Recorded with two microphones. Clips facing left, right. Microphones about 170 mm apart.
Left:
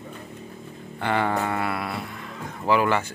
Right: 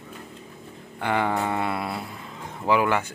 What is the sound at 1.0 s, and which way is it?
Speech, 10° right (ahead or behind).